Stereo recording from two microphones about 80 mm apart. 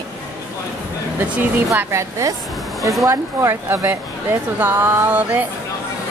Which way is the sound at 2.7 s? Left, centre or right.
Centre.